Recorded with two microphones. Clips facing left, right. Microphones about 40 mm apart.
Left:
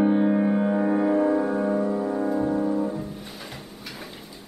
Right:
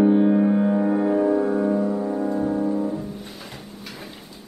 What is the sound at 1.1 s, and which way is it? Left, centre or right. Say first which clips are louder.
Music: right 2 dB; left.